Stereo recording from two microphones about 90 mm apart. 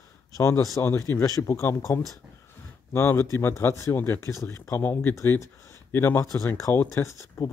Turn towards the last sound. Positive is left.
turn(degrees=35)  # may be behind; listen again after turning